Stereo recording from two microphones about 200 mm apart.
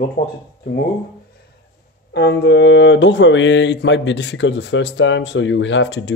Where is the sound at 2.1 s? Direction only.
60° left (ahead or behind).